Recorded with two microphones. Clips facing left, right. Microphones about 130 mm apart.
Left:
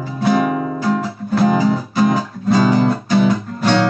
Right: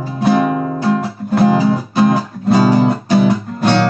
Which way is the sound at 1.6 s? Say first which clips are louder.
Right 2 dB; 15° right (ahead or behind).